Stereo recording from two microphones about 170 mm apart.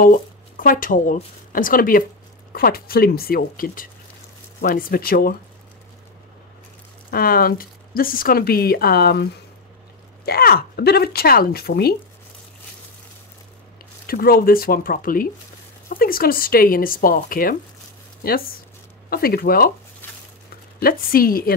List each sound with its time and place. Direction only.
0.0 s speech: 55° left (ahead or behind)
7.1 s speech: 60° left (ahead or behind)
14.0 s speech: 60° left (ahead or behind)
19.0 s speech: 60° left (ahead or behind)
20.0 s a sound: 10° left (ahead or behind)
20.8 s speech: 60° left (ahead or behind)